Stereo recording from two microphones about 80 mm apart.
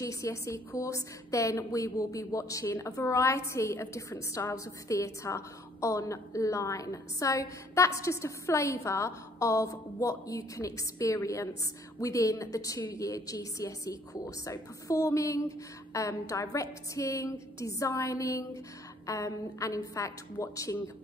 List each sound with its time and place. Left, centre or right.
0.0 s a woman's voice: left